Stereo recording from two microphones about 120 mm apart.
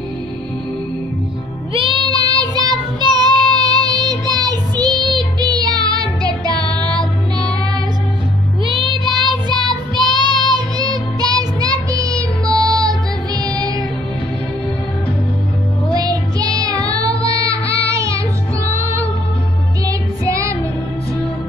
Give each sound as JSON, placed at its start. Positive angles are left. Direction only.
{"t": 1.7, "sound": "child singing", "side_deg": -45}
{"t": 5.4, "sound": "music", "side_deg": -35}
{"t": 6.7, "sound": "music", "side_deg": 10}
{"t": 8.6, "sound": "child singing", "side_deg": -40}
{"t": 13.6, "sound": "music", "side_deg": -30}
{"t": 15.9, "sound": "music", "side_deg": -30}
{"t": 16.5, "sound": "child singing", "side_deg": -30}
{"t": 17.9, "sound": "music", "side_deg": -25}